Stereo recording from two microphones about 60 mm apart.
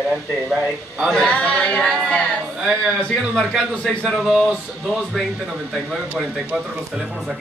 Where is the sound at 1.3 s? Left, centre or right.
Left.